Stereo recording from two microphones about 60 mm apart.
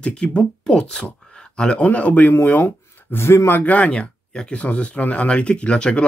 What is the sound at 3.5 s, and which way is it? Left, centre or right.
Speech, left.